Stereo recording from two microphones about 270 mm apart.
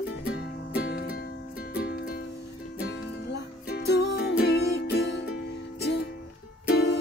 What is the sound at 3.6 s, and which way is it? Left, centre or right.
Music, left.